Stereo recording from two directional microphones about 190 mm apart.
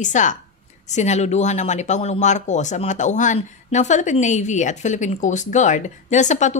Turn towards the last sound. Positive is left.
turn(degrees=40)  # may be behind; listen again after turning